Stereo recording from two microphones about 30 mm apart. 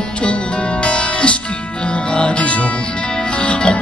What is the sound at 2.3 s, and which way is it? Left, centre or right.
Music, left.